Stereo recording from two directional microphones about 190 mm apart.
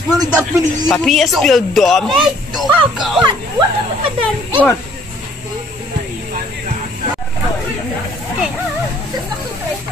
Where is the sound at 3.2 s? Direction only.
25° right (ahead or behind).